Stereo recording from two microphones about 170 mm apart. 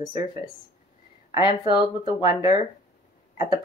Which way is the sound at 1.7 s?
25° left (ahead or behind).